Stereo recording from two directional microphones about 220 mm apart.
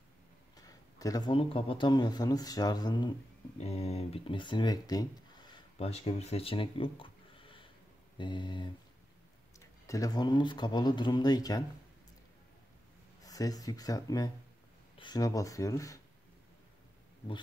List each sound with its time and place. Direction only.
0.6 s speech: 15° left (ahead or behind)
5.8 s speech: 30° left (ahead or behind)
9.8 s speech: 15° left (ahead or behind)
13.2 s speech: 15° left (ahead or behind)